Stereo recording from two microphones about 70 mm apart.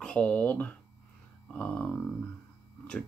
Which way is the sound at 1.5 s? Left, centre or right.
Centre.